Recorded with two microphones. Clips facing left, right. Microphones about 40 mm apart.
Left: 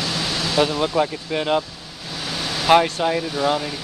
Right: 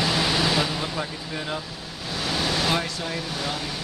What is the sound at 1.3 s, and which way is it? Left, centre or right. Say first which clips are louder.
Speech: left 11 dB; left.